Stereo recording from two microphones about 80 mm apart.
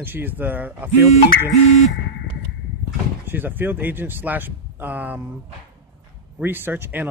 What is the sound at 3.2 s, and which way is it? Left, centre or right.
Speech, right.